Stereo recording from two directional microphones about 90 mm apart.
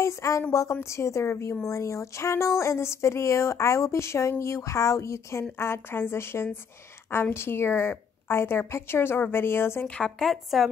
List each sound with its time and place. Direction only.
0.0 s a woman's voice: 35° left (ahead or behind)
9.8 s a woman's voice: 10° left (ahead or behind)